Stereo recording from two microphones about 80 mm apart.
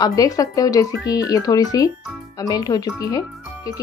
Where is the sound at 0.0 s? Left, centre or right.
Left.